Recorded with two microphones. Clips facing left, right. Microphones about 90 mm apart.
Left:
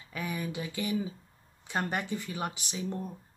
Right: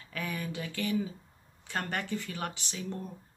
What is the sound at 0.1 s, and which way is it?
Speech, 15° left (ahead or behind).